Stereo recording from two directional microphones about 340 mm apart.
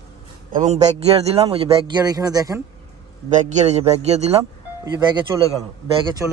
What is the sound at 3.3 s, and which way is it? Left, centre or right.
A man's voice, right.